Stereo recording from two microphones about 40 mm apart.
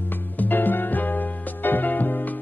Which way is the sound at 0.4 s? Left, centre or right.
Left.